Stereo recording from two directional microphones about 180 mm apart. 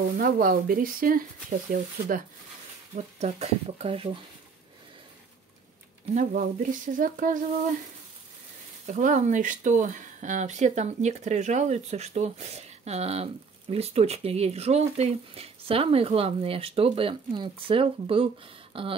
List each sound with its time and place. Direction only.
0.2 s speech: 50° right (ahead or behind)
3.0 s speech: 35° right (ahead or behind)
6.1 s speech: 50° right (ahead or behind)
8.8 s speech: 45° right (ahead or behind)